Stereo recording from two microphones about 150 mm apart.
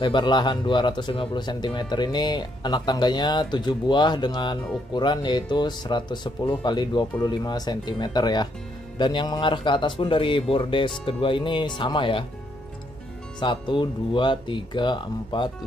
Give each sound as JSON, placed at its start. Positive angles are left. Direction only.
{"t": 0.0, "sound": "speech", "side_deg": 30}
{"t": 13.4, "sound": "speech", "side_deg": 30}